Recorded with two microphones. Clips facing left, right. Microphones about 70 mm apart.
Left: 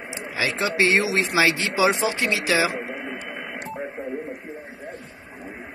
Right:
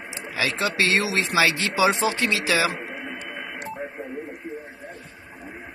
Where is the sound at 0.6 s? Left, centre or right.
Left.